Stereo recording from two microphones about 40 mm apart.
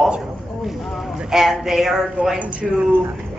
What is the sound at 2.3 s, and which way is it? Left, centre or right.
Speech, right.